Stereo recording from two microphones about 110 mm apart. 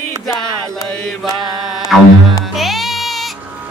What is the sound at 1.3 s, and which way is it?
Mantra, 35° right (ahead or behind).